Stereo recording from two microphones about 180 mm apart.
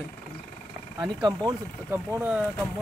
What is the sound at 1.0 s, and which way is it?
A man's voice, 20° right (ahead or behind).